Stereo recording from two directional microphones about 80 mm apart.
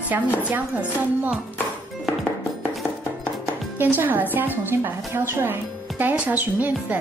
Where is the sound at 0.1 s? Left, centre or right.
Right.